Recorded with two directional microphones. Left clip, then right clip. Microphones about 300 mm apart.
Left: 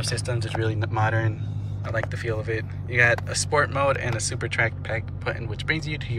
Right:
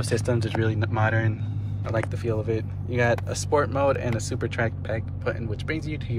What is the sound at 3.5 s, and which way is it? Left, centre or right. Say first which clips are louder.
Speech: even; centre.